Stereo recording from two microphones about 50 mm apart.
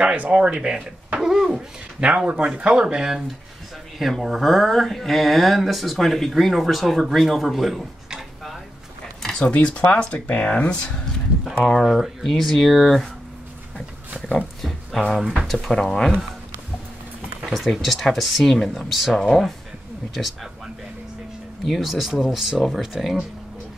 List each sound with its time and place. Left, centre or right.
0.0 s speech: right
0.3 s speech: centre
2.0 s speech: right; by 7.8 s centre
9.2 s a sound: centre
9.5 s speech: left
11.6 s speech: centre
14.6 s a sound: centre
15.4 s speech: centre
17.5 s speech: centre
20.2 s a sound: centre
21.6 s speech: centre